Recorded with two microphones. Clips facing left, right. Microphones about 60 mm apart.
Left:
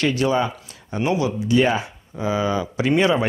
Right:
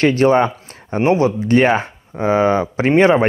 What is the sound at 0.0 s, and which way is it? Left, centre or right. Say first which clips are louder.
Speech: right 7 dB; right.